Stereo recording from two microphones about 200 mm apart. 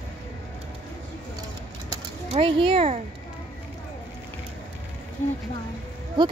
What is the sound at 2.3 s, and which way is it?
Speech, 25° right (ahead or behind).